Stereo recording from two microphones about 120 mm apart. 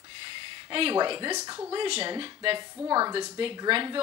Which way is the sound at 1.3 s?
30° right (ahead or behind).